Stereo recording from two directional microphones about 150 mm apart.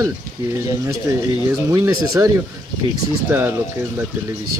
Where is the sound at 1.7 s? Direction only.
20° right (ahead or behind).